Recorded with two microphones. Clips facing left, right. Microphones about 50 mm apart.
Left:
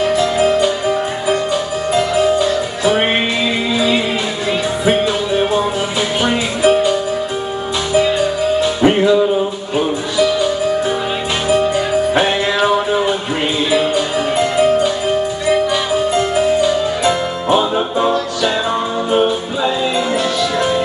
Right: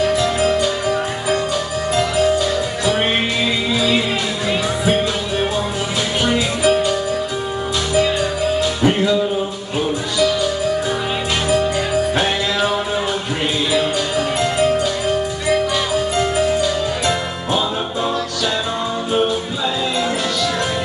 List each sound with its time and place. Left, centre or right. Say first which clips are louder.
0.0 s music: left 3 dB; centre
6.6 s music: left 5 dB; centre
8.8 s music: left 5 dB; left
9.8 s music: left 3 dB; centre